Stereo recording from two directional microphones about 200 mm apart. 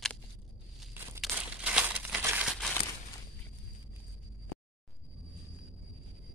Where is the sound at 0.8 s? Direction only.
5° right (ahead or behind).